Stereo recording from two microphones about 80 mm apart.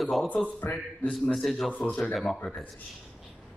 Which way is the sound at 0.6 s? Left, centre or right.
Left.